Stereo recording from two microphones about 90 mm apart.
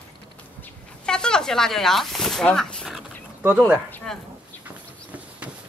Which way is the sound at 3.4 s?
20° right (ahead or behind).